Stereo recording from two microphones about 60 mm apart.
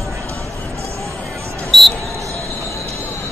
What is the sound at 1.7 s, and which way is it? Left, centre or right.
Basketball bounce, centre.